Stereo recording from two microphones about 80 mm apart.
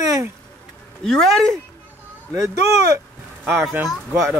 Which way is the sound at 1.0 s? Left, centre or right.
Centre.